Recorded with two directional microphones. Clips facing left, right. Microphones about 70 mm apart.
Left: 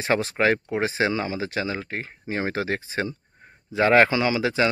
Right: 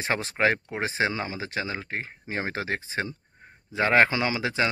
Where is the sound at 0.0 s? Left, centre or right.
Right.